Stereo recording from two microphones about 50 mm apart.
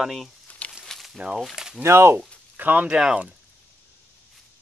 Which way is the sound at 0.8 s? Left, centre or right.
Centre.